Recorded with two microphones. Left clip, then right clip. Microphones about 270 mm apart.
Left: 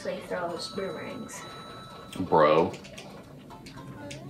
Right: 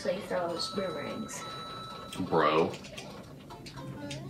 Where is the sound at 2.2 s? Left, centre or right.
Left.